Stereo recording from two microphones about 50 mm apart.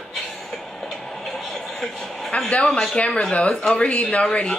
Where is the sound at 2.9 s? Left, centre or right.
Left.